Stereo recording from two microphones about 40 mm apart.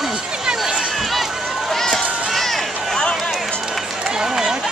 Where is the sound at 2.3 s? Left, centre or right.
Centre.